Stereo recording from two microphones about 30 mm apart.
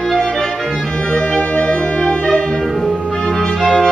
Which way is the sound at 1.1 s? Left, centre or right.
Left.